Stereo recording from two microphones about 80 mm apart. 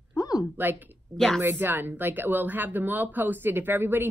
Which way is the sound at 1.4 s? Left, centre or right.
Right.